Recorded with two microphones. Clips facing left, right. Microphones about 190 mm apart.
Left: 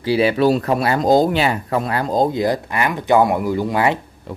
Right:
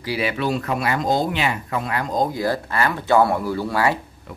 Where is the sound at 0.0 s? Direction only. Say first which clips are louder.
Left 8 dB; 30° left (ahead or behind).